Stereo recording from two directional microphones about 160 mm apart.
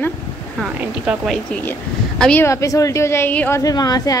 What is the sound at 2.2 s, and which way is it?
A woman's voice, 10° left (ahead or behind).